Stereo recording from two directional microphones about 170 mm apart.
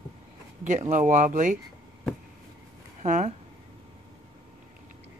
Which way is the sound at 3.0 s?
45° right (ahead or behind).